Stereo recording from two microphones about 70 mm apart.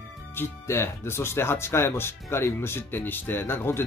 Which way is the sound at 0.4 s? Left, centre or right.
Left.